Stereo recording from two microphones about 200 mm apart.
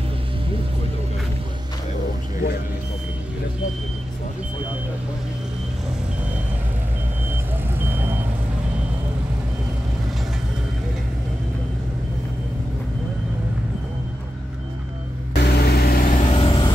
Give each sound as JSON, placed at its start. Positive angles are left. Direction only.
{"t": 7.2, "sound": "vehicle", "side_deg": -10}
{"t": 15.3, "sound": "vehicle", "side_deg": 55}
{"t": 16.3, "sound": "vehicle", "side_deg": 25}